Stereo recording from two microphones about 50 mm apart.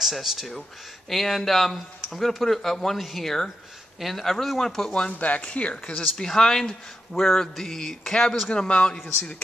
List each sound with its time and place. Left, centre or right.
0.0 s speech: centre
5.1 s speech: left; by 8.5 s centre
8.5 s speech: left